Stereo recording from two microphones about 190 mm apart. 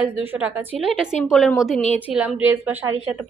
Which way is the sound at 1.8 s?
35° left (ahead or behind).